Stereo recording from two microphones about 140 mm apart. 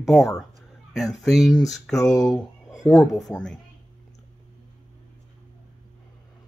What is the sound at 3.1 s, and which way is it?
Speech, 5° left (ahead or behind).